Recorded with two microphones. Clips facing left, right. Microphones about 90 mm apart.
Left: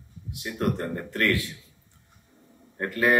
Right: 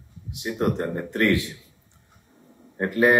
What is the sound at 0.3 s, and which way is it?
A man's voice, 20° right (ahead or behind).